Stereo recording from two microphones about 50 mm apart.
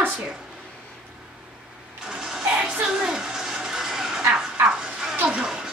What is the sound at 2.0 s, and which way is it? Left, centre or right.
Vehicle, centre.